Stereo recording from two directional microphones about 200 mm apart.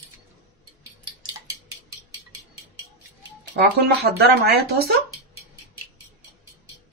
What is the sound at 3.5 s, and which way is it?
Speech, 50° right (ahead or behind).